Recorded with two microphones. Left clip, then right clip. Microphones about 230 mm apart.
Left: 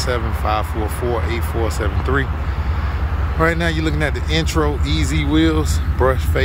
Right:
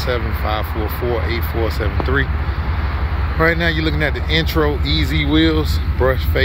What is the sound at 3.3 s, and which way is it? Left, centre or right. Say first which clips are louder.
Speech: right 2 dB; centre.